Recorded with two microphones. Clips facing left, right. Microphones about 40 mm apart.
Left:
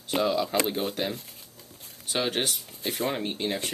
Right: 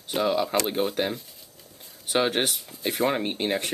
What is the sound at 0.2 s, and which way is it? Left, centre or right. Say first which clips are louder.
Speech: right 2 dB; right.